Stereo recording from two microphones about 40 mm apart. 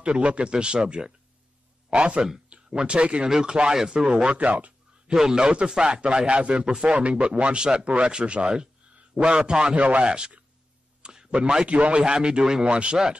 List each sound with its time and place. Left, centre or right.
0.0 s a man's voice: right
4.5 s speech: right
5.1 s a man's voice: centre
11.0 s a sound: centre
11.2 s a man's voice: right